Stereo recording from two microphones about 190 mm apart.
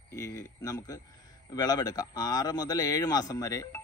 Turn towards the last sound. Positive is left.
turn(degrees=15)  # may be behind; listen again after turning